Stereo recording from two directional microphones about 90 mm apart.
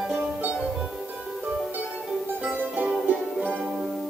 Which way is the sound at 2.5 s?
20° right (ahead or behind).